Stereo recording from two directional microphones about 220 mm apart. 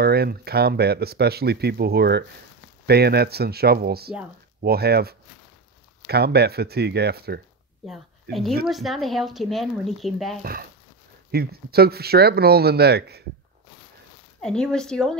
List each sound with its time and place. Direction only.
0.0 s speech: 45° right (ahead or behind)
7.8 s a woman's voice: centre (ahead or behind)
11.3 s speech: 45° right (ahead or behind)
14.4 s speech: 5° left (ahead or behind)